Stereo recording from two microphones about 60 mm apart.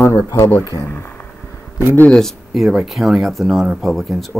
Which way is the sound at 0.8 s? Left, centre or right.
Left.